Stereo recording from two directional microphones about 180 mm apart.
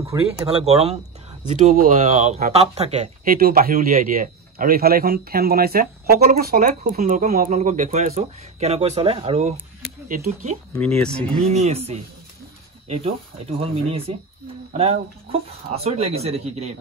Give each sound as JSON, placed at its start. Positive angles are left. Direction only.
{"t": 0.1, "sound": "speech", "side_deg": -15}
{"t": 0.5, "sound": "speech", "side_deg": -35}
{"t": 1.6, "sound": "speech", "side_deg": -45}
{"t": 3.3, "sound": "a man's voice", "side_deg": -55}
{"t": 10.0, "sound": "speech", "side_deg": -50}
{"t": 10.8, "sound": "speech", "side_deg": 5}
{"t": 11.4, "sound": "speech", "side_deg": -35}